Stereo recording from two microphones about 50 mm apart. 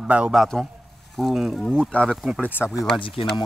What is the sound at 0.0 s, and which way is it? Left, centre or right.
Speech, right.